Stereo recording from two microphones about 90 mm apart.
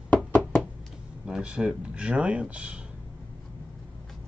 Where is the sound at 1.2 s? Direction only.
10° right (ahead or behind).